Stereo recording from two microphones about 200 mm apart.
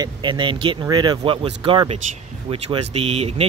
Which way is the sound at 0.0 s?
25° right (ahead or behind).